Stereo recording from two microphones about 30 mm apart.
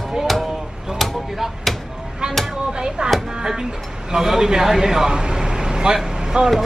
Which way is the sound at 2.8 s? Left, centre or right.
Right.